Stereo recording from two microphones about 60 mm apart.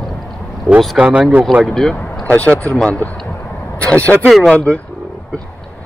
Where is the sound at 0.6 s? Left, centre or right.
Centre.